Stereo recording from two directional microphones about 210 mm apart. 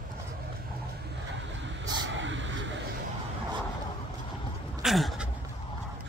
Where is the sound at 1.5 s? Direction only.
60° right (ahead or behind).